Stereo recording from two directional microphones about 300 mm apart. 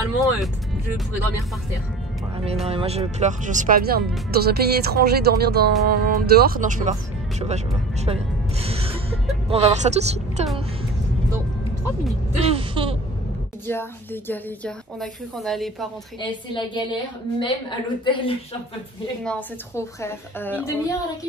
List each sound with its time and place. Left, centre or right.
2.6 s speech: centre
8.6 s music: centre
9.5 s speech: right
12.4 s a sound: centre
13.7 s a woman's voice: centre
16.2 s a woman's voice: centre
19.2 s a woman's voice: centre